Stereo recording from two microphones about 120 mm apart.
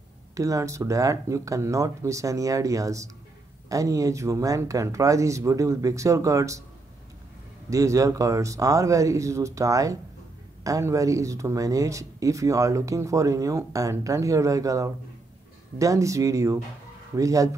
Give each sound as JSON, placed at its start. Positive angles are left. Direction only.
{"t": 0.3, "sound": "speech", "side_deg": -30}
{"t": 7.7, "sound": "speech", "side_deg": -25}